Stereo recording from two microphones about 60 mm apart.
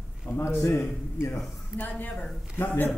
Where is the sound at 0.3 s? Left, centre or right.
Left.